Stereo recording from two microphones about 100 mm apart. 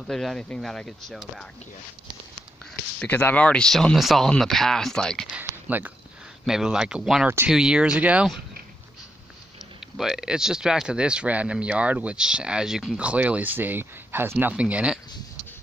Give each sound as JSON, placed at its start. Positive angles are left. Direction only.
{"t": 0.0, "sound": "speech", "side_deg": 0}
{"t": 3.0, "sound": "speech", "side_deg": 15}
{"t": 5.3, "sound": "speech", "side_deg": -20}
{"t": 6.4, "sound": "speech", "side_deg": -5}
{"t": 9.9, "sound": "speech", "side_deg": -5}
{"t": 14.5, "sound": "speech", "side_deg": -10}